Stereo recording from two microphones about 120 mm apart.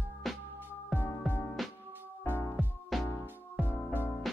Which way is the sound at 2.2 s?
15° left (ahead or behind).